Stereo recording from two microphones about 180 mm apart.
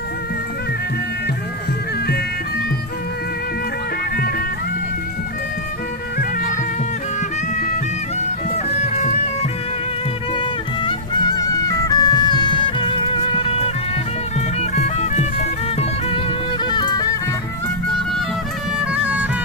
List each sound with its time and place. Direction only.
8.6 s music: 40° left (ahead or behind)
10.3 s music: 25° left (ahead or behind)
16.6 s music: 25° left (ahead or behind)
18.9 s music: 5° right (ahead or behind)